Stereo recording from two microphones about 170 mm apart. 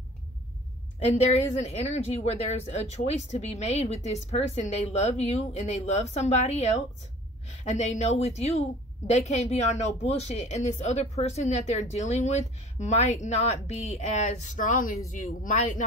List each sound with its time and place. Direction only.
0.9 s speech: 40° left (ahead or behind)